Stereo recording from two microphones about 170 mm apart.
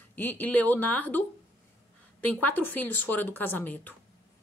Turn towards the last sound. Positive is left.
turn(degrees=10)  # may be behind; listen again after turning